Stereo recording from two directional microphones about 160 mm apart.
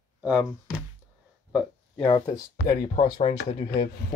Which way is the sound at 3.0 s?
35° left (ahead or behind).